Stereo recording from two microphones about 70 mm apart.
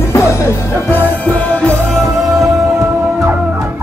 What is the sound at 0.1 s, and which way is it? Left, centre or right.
Music, left.